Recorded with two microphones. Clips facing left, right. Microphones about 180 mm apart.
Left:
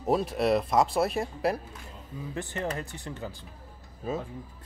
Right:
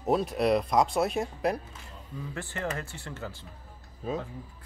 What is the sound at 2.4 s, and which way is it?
Speech, 20° left (ahead or behind).